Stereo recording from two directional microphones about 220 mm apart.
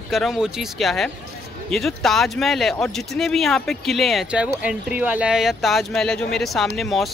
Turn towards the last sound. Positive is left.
turn(degrees=0)  # may be behind; listen again after turning